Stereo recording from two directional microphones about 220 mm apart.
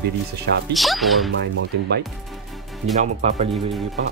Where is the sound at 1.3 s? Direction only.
50° right (ahead or behind).